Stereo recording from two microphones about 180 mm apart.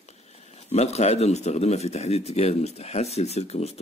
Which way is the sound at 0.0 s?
40° left (ahead or behind).